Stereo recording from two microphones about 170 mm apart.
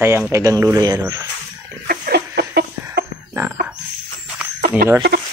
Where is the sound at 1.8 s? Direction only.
60° right (ahead or behind); by 2.6 s 75° right (ahead or behind).